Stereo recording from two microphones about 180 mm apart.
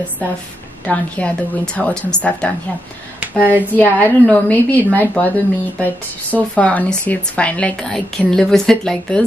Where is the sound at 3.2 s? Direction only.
10° right (ahead or behind).